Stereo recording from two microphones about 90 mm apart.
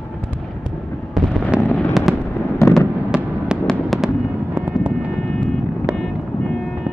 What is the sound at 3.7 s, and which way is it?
Fireworks, centre (ahead or behind).